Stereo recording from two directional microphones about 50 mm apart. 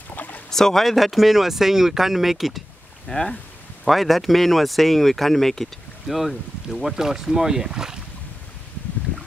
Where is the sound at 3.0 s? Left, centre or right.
Centre.